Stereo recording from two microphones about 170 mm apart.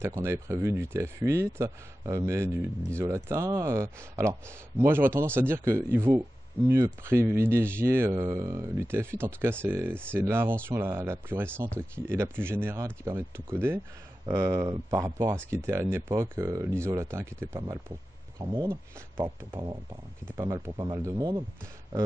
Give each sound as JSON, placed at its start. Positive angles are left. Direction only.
{"t": 0.0, "sound": "speech", "side_deg": -15}